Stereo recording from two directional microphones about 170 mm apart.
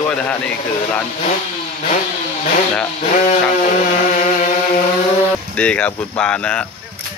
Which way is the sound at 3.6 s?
45° left (ahead or behind).